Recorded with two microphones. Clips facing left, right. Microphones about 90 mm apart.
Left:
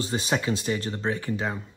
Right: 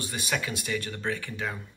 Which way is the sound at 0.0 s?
30° left (ahead or behind).